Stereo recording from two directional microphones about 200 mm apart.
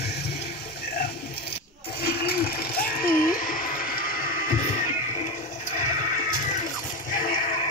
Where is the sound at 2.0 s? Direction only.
50° left (ahead or behind).